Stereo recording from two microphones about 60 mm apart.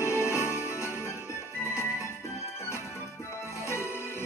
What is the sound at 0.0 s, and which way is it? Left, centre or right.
Music, left.